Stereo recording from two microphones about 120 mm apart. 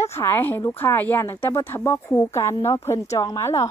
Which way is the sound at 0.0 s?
20° left (ahead or behind).